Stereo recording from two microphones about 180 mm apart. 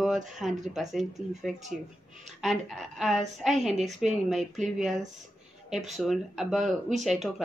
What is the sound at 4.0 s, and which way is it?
A woman's voice, centre (ahead or behind).